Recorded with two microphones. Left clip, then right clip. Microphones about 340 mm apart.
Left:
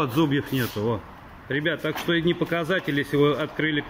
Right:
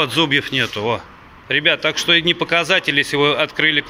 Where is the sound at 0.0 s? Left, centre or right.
Centre.